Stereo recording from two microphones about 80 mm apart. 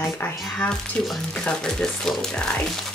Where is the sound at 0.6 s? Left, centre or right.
Centre.